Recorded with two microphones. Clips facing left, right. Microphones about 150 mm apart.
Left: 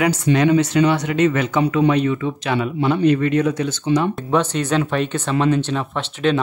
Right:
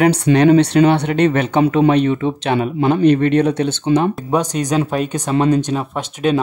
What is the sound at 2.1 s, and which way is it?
Speech, 30° right (ahead or behind).